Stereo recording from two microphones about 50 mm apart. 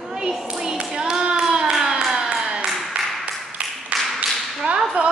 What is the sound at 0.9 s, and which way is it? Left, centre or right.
Child singing, centre.